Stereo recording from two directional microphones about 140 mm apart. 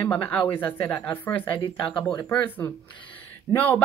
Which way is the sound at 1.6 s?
35° left (ahead or behind).